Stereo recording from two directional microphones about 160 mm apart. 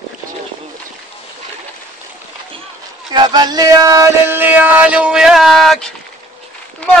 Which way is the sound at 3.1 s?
25° right (ahead or behind).